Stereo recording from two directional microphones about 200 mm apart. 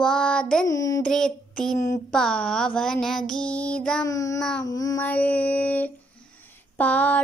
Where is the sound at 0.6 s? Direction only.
15° left (ahead or behind).